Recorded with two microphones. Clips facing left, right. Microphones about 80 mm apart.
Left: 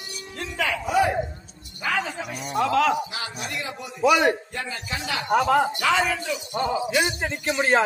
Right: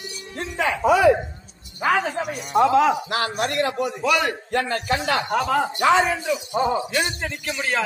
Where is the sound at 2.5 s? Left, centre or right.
Right.